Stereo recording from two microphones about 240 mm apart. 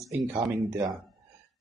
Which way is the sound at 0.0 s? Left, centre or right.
Centre.